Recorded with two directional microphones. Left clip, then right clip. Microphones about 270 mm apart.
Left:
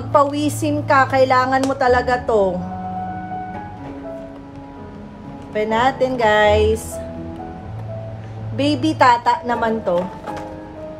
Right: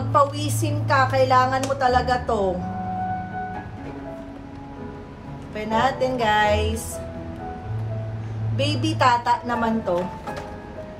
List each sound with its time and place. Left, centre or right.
0.1 s a woman's voice: left
5.5 s a woman's voice: left
8.5 s a woman's voice: left